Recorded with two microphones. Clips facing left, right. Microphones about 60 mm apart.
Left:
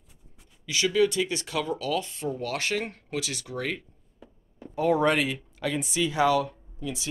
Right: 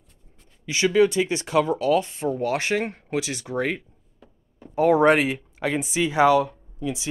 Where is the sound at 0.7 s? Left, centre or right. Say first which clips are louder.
Right 5 dB; right.